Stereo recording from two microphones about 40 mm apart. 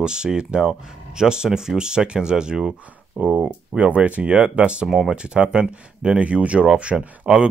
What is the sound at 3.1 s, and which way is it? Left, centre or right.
Speech, right.